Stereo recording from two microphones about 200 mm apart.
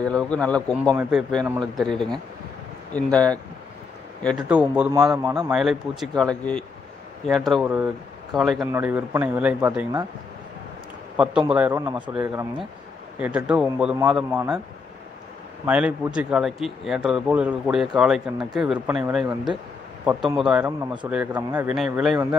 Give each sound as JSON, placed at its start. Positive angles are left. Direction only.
{"t": 0.0, "sound": "speech", "side_deg": 5}
{"t": 1.4, "sound": "speech", "side_deg": -20}
{"t": 1.8, "sound": "speech", "side_deg": 0}
{"t": 4.5, "sound": "speech", "side_deg": -5}
{"t": 11.1, "sound": "speech", "side_deg": -5}
{"t": 13.2, "sound": "speech", "side_deg": -5}
{"t": 15.6, "sound": "speech", "side_deg": -5}